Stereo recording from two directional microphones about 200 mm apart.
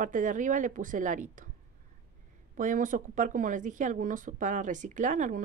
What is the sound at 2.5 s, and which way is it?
Speech, 40° right (ahead or behind).